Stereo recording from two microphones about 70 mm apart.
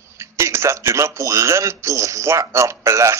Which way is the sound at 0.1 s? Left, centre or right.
Right.